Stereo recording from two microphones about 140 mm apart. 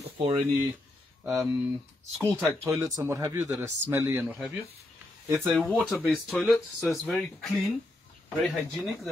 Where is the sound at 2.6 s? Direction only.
20° right (ahead or behind).